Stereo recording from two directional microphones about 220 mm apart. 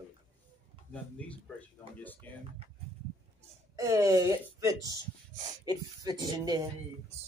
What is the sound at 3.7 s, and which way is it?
Speech, 15° right (ahead or behind).